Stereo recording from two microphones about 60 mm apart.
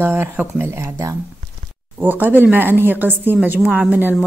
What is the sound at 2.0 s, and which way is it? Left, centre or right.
A woman's voice, right.